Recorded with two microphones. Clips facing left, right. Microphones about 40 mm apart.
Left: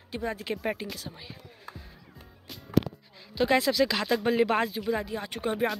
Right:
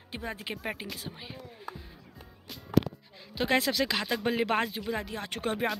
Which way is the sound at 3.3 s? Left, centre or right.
Right.